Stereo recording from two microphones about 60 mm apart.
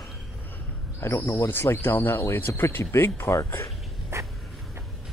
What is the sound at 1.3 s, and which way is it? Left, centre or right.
Speech, left.